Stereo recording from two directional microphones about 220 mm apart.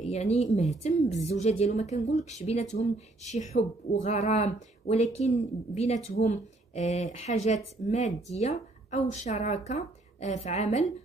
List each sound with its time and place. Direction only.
0.0 s a woman's voice: 30° left (ahead or behind)